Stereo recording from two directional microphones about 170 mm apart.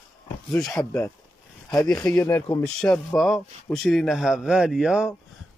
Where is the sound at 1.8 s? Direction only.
5° left (ahead or behind).